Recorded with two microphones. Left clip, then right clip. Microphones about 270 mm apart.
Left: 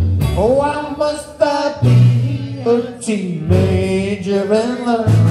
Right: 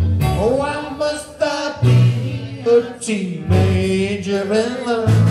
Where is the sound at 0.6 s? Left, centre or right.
Centre.